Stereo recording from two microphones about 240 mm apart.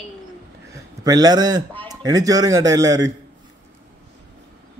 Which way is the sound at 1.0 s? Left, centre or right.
Centre.